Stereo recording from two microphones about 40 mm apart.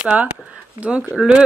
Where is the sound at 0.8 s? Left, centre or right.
Centre.